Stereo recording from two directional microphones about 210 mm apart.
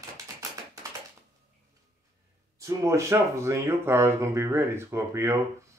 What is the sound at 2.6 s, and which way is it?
Speech, 15° right (ahead or behind).